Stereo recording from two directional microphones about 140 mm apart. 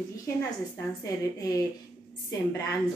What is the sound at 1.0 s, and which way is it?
Speech, 25° left (ahead or behind).